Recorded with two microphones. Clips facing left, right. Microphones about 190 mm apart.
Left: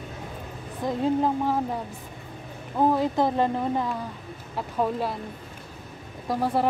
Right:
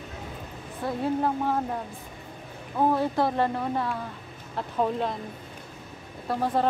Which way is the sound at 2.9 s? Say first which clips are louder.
Left 1 dB; 15° left (ahead or behind).